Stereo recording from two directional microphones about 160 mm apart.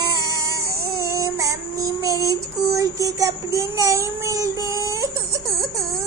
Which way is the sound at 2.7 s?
20° right (ahead or behind).